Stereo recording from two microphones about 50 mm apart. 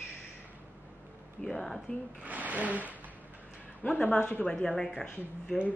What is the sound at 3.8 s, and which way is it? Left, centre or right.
Speech, left.